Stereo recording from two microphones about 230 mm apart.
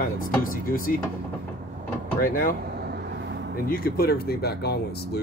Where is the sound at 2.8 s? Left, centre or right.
Right.